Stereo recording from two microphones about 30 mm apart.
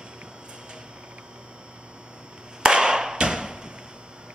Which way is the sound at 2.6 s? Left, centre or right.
Right.